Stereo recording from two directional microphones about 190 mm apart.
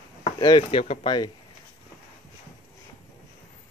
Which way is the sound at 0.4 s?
25° left (ahead or behind).